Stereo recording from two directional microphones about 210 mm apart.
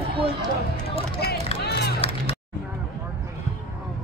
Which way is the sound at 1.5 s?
50° left (ahead or behind).